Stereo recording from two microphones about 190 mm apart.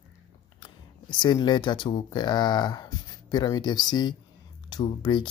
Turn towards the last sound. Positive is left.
turn(degrees=25)  # may be behind; listen again after turning